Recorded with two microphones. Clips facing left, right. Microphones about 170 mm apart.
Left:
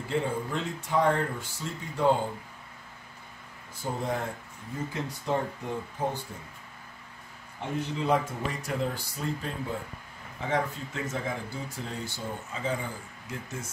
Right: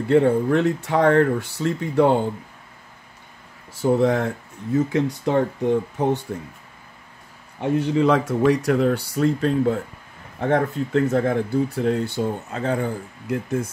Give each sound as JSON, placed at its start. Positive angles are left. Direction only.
{"t": 0.1, "sound": "speech", "side_deg": -65}
{"t": 3.8, "sound": "speech", "side_deg": -75}
{"t": 7.6, "sound": "speech", "side_deg": -85}
{"t": 10.4, "sound": "speech", "side_deg": -60}